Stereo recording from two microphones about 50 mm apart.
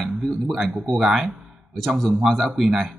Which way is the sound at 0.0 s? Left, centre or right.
Centre.